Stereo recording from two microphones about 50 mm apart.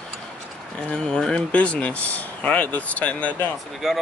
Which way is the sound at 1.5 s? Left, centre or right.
Left.